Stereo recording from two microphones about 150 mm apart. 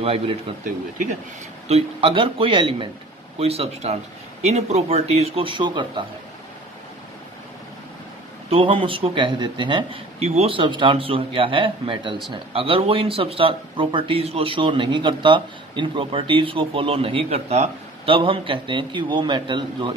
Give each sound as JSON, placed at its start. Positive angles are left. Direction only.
{"t": 0.0, "sound": "speech", "side_deg": -40}
{"t": 1.7, "sound": "speech", "side_deg": -40}
{"t": 8.5, "sound": "speech", "side_deg": -35}
{"t": 10.1, "sound": "speech", "side_deg": -45}